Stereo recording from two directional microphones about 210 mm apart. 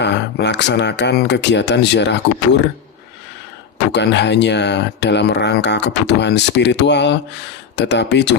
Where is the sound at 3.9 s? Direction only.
55° left (ahead or behind).